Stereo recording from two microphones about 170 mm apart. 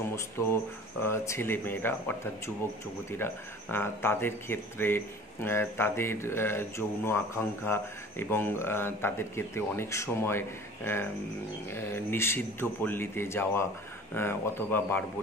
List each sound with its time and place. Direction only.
0.1 s speech: 15° left (ahead or behind)
3.7 s speech: 15° left (ahead or behind)